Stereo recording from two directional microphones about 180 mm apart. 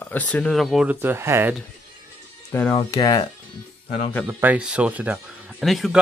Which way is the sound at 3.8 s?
45° left (ahead or behind).